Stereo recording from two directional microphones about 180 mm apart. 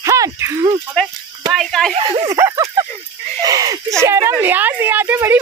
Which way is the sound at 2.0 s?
30° right (ahead or behind).